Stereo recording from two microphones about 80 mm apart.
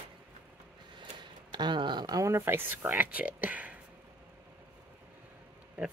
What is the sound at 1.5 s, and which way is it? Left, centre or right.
Speech, right.